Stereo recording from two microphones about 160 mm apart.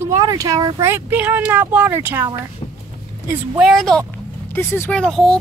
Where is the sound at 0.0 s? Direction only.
20° right (ahead or behind).